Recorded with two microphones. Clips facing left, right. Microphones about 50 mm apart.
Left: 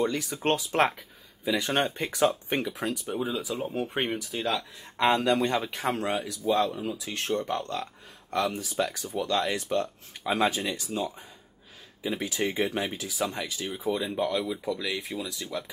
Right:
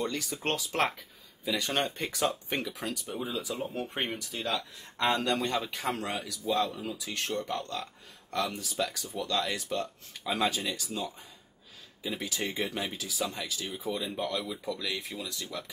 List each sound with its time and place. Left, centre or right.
0.0 s speech: left
12.2 s speech: left
14.2 s speech: centre